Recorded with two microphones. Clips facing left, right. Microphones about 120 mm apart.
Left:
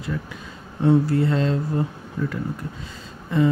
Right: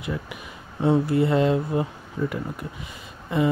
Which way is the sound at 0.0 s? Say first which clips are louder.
Left 1 dB; 15° right (ahead or behind).